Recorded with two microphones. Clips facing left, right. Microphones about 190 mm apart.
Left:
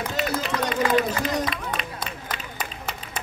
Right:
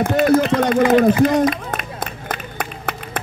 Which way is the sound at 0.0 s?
55° right (ahead or behind).